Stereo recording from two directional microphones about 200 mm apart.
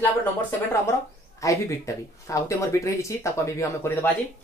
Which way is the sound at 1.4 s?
15° left (ahead or behind).